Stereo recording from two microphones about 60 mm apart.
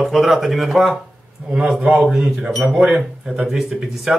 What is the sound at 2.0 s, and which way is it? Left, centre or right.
Speech, centre.